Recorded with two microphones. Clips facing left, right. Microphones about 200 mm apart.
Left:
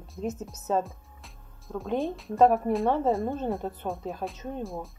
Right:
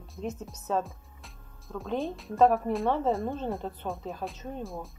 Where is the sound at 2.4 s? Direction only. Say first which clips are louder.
Left 1 dB; 15° left (ahead or behind).